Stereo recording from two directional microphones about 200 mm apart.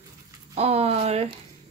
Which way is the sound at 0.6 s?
30° right (ahead or behind).